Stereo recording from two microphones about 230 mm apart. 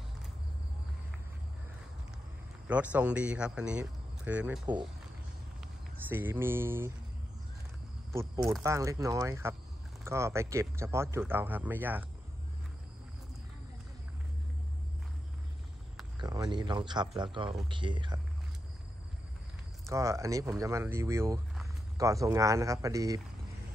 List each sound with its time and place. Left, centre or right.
2.7 s speech: centre
6.0 s speech: centre
8.6 s speech: centre
16.2 s speech: centre
19.9 s speech: centre